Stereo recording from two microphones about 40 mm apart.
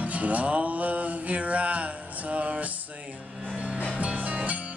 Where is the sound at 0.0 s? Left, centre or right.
Right.